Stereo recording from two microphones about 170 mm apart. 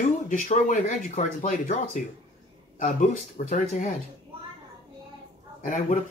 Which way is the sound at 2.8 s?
50° left (ahead or behind).